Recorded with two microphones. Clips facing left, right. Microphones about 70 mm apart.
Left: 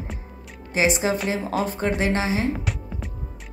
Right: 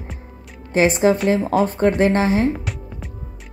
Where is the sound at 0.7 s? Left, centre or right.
Right.